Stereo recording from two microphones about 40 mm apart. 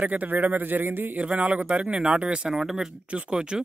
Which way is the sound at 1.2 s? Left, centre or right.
Right.